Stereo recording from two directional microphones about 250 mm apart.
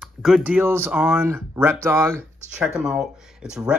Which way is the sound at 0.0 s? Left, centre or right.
Centre.